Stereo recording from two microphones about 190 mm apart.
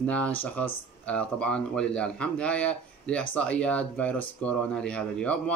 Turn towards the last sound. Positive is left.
turn(degrees=5)  # may be behind; listen again after turning